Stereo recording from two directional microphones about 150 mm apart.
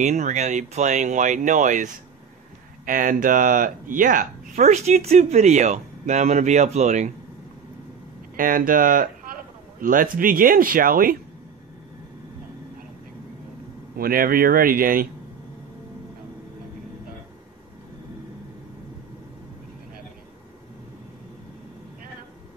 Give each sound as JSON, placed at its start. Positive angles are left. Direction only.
{"t": 0.0, "sound": "speech", "side_deg": -55}
{"t": 8.4, "sound": "speech", "side_deg": -65}
{"t": 13.9, "sound": "speech", "side_deg": -80}